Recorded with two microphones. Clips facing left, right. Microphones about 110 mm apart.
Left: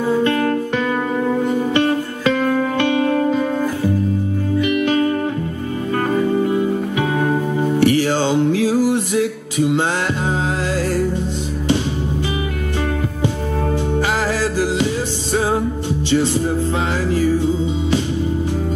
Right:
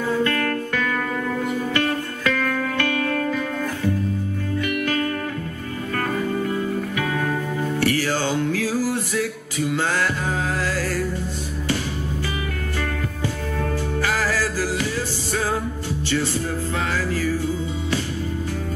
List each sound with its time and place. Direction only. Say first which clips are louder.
0.0 s music: left 5 dB; 20° left (ahead or behind)
13.9 s music: left 2 dB; 20° left (ahead or behind)
16.1 s music: left 7 dB; 25° left (ahead or behind)